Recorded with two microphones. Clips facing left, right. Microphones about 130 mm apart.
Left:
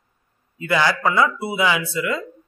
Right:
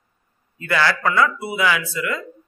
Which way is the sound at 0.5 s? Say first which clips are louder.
Left 1 dB; 20° left (ahead or behind).